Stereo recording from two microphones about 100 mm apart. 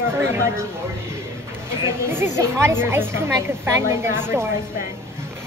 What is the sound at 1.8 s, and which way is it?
A woman's voice, 25° right (ahead or behind).